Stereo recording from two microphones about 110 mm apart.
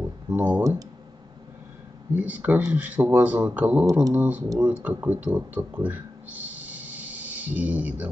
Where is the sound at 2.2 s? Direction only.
15° right (ahead or behind).